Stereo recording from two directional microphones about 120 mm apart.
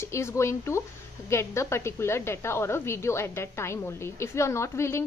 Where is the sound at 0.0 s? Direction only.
20° left (ahead or behind).